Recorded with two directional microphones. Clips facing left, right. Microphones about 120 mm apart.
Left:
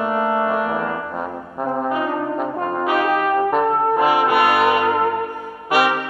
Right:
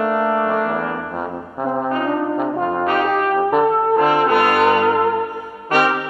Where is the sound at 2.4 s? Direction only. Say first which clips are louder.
Right 3 dB; centre (ahead or behind).